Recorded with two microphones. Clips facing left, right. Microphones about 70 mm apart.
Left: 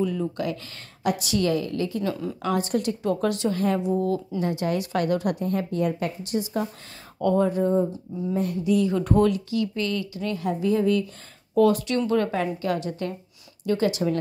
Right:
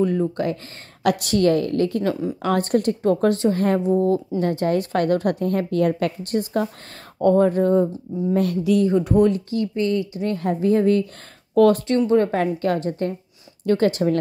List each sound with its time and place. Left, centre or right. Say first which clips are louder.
0.0 s a woman's voice: right 5 dB; right
1.0 s a woman's voice: right 6 dB; right
4.4 s a woman's voice: right 5 dB; right
9.3 s speech: right 2 dB; right
10.2 s a woman's voice: right 3 dB; right
11.5 s speech: right 4 dB; right
12.3 s a woman's voice: right 4 dB; right